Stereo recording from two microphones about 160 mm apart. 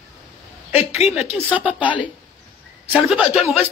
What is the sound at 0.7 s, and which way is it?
Speech, 40° left (ahead or behind).